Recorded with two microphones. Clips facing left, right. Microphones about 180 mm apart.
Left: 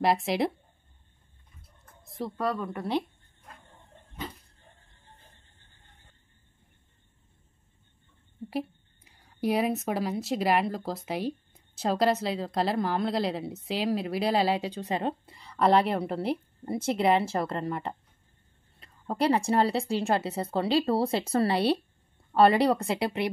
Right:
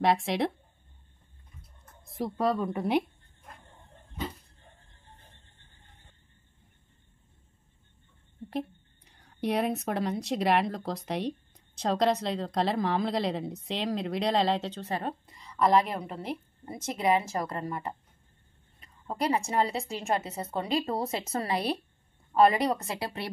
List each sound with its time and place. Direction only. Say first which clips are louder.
0.0 s a woman's voice: left 1 dB; centre (ahead or behind)
2.3 s speech: right 3 dB; 25° right (ahead or behind)
8.5 s a woman's voice: left 1 dB; 5° left (ahead or behind); by 17.8 s 30° left (ahead or behind)
19.0 s speech: left 4 dB; 30° left (ahead or behind)